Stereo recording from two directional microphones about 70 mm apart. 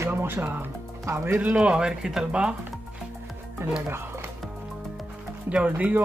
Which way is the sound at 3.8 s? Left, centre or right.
Right.